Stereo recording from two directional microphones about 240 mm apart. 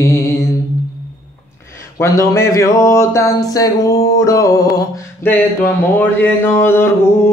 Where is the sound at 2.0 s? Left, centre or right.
Centre.